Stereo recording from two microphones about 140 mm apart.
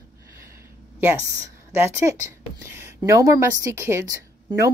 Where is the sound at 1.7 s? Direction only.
15° right (ahead or behind).